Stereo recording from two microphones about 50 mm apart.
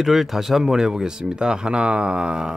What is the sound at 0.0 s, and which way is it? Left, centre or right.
Speech, centre.